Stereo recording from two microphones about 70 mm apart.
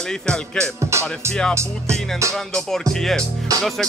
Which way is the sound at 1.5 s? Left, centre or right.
Right.